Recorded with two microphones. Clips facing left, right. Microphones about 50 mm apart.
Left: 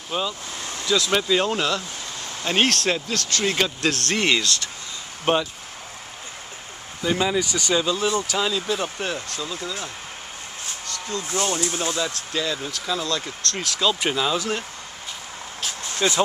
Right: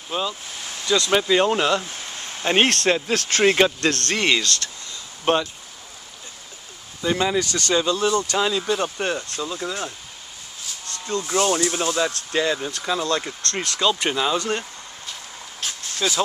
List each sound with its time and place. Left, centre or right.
0.1 s speech: centre
1.1 s speech: centre
2.7 s speech: centre
3.3 s speech: right
3.8 s speech: centre
7.0 s speech: centre
7.3 s speech: centre
8.4 s speech: centre
9.4 s speech: right
11.2 s speech: right
11.7 s speech: centre
13.5 s speech: centre
16.0 s speech: centre